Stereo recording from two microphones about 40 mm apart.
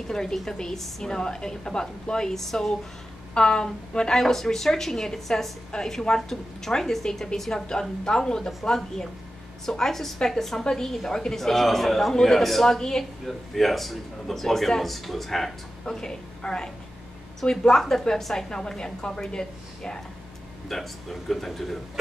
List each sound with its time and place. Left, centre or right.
0.1 s a woman's voice: centre
3.3 s a woman's voice: centre
8.0 s a woman's voice: centre
15.8 s a woman's voice: centre
20.6 s a man's voice: centre